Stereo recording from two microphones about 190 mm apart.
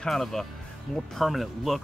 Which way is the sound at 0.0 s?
5° left (ahead or behind).